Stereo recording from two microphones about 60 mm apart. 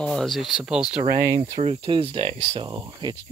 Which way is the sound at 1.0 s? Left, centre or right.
Right.